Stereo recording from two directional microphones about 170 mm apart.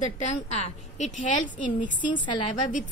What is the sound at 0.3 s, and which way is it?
A woman's voice, 40° left (ahead or behind).